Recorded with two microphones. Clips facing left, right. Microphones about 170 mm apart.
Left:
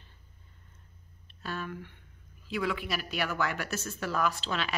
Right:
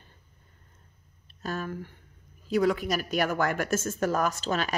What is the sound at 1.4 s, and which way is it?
Speech, 40° right (ahead or behind).